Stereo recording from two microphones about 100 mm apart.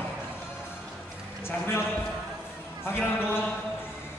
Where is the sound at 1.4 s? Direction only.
25° left (ahead or behind).